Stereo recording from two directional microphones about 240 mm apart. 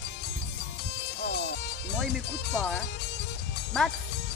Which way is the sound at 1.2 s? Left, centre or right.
Left.